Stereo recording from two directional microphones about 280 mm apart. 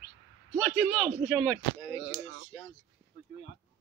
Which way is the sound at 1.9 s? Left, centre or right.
Centre.